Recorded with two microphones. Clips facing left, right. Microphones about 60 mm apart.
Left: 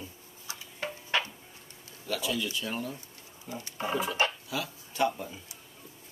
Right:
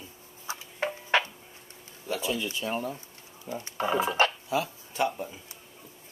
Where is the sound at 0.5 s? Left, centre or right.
Right.